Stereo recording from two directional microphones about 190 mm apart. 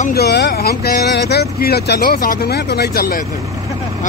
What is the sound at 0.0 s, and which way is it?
Speech, 55° left (ahead or behind).